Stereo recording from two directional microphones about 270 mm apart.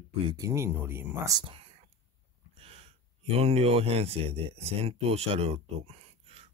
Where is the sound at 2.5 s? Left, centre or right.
Right.